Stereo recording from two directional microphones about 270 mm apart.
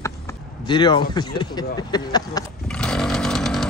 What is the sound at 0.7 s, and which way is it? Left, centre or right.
Speech, centre.